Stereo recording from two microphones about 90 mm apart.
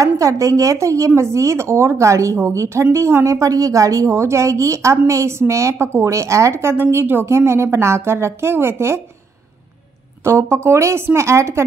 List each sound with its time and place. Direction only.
0.0 s speech: 40° right (ahead or behind)
10.2 s speech: 30° right (ahead or behind)